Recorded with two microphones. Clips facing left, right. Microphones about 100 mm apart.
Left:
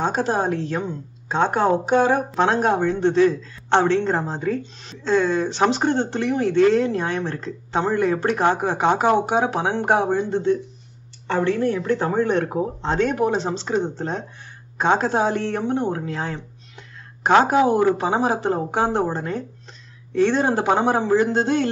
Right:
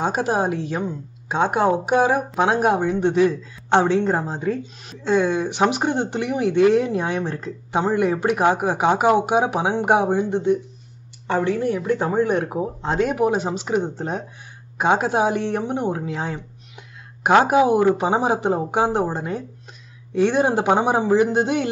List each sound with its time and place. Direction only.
0.0 s a woman's voice: 10° right (ahead or behind)